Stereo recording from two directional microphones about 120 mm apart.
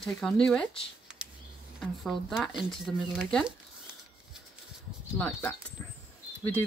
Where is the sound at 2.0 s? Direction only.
Centre (ahead or behind).